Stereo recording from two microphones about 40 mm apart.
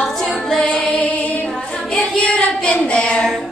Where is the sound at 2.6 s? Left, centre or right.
Left.